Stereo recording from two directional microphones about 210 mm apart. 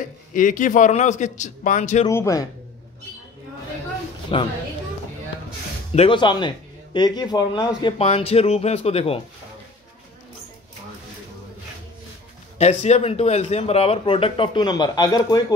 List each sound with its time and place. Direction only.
0.0 s a man's voice: 40° left (ahead or behind)
2.0 s a man's voice: 15° left (ahead or behind)
4.3 s speech: 25° left (ahead or behind)
5.9 s speech: 25° left (ahead or behind)
12.5 s speech: 30° left (ahead or behind)